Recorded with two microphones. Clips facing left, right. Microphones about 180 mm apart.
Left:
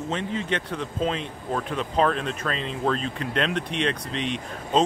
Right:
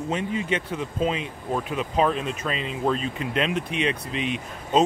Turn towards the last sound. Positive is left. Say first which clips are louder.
# right 1 dB
turn(degrees=-5)  # may be behind; listen again after turning